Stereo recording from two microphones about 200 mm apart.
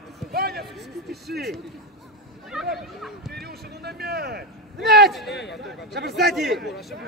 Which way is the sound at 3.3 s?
50° right (ahead or behind).